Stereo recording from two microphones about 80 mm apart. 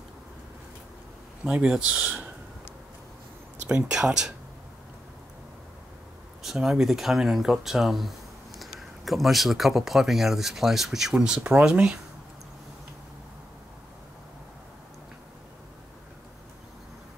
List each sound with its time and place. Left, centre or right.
1.4 s speech: centre
3.6 s speech: centre
6.4 s speech: centre